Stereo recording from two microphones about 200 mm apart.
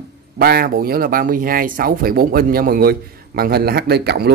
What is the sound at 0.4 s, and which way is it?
Speech, 50° right (ahead or behind).